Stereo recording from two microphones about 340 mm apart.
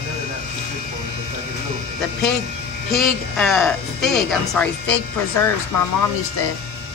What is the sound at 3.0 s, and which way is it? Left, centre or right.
Speech, centre.